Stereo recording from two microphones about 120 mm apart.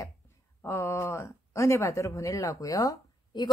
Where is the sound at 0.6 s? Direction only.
20° left (ahead or behind); by 3.5 s 40° left (ahead or behind).